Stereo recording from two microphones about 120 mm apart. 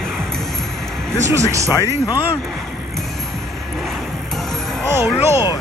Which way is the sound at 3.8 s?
Centre (ahead or behind).